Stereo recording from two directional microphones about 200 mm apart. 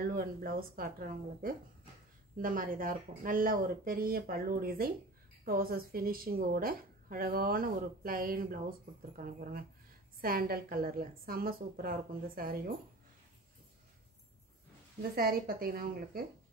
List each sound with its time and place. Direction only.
0.0 s a woman's voice: 45° right (ahead or behind)
15.1 s a woman's voice: 50° right (ahead or behind)